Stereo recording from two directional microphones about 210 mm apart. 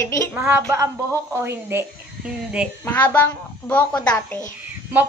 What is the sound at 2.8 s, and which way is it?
A woman's voice, 10° left (ahead or behind).